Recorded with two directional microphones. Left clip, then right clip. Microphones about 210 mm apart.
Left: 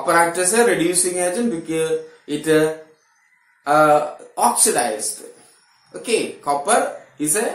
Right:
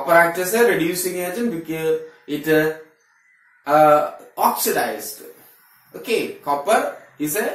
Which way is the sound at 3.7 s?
15° left (ahead or behind).